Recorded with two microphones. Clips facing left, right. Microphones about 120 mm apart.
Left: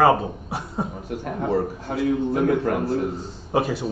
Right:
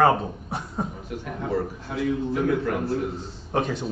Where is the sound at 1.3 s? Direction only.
40° left (ahead or behind).